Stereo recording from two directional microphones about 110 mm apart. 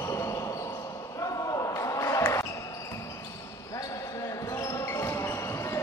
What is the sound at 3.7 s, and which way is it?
Basketball bounce, 30° left (ahead or behind).